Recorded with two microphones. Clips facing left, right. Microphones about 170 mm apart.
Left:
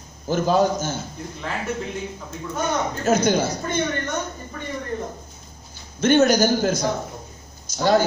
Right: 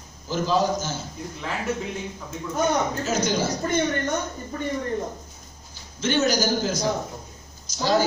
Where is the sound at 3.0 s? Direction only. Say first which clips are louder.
Left 5 dB; 55° left (ahead or behind).